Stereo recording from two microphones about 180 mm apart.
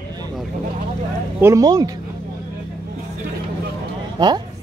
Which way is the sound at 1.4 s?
20° right (ahead or behind).